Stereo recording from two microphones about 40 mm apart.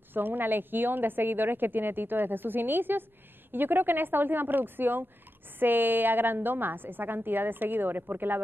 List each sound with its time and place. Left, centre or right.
0.1 s a woman's voice: right